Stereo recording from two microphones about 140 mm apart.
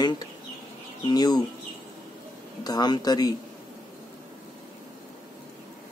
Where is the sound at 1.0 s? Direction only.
30° left (ahead or behind).